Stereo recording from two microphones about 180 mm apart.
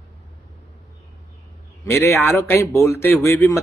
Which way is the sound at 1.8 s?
15° left (ahead or behind).